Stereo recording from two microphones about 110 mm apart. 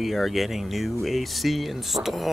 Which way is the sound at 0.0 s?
Centre (ahead or behind).